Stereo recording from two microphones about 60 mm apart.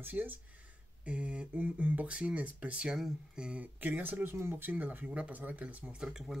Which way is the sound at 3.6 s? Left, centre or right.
Right.